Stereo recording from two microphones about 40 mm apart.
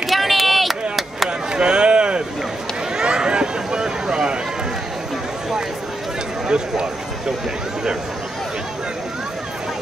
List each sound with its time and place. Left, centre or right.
0.0 s chop: centre
1.5 s a sound: right
6.4 s run: centre